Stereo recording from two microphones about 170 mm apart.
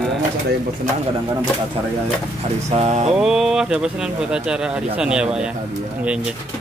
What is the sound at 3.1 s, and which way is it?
A man's voice, 5° right (ahead or behind).